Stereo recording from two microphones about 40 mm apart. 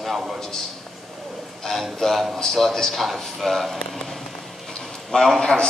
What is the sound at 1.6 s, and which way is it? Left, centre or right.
A man's voice, centre.